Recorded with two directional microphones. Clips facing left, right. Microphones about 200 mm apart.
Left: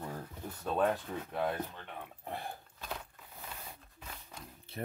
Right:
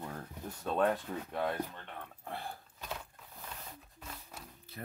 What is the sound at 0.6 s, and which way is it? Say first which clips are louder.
Speech: even; 5° left (ahead or behind).